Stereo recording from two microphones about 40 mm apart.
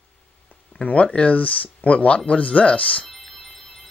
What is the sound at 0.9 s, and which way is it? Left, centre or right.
Speech, left.